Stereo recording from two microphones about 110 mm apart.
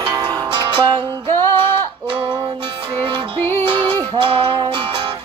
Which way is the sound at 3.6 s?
45° right (ahead or behind).